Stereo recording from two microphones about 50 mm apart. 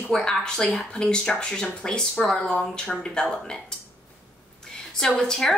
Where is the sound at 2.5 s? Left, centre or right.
Centre.